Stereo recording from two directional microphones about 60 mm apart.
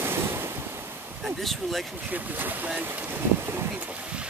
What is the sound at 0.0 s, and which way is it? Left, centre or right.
Waves, right.